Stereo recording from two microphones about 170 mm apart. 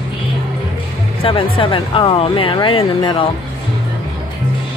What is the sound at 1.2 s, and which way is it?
Speech, 30° left (ahead or behind).